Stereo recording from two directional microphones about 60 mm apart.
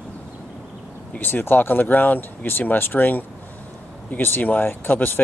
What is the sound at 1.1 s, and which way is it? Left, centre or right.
Speech, left.